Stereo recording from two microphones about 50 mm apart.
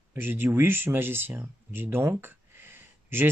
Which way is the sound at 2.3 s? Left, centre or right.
Right.